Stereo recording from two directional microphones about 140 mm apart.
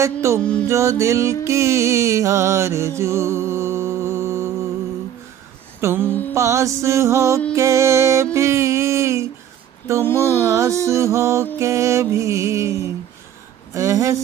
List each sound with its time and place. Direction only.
0.0 s music: 20° right (ahead or behind)
0.4 s music: 5° left (ahead or behind)
0.7 s music: 20° right (ahead or behind)
5.8 s mantra: 20° right (ahead or behind)
6.3 s music: 20° right (ahead or behind)